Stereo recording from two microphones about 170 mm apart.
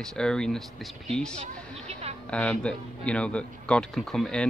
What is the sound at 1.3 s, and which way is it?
Music, 40° right (ahead or behind).